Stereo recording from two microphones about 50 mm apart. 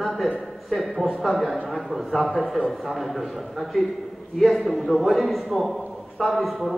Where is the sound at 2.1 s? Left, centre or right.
Centre.